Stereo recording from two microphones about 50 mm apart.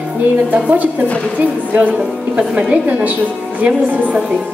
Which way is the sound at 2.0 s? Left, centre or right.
Right.